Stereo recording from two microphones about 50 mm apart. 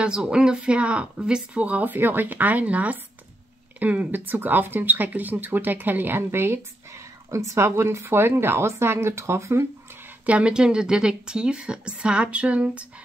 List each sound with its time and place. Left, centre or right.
0.0 s a woman's voice: centre
1.9 s speech: right
10.2 s a woman's voice: right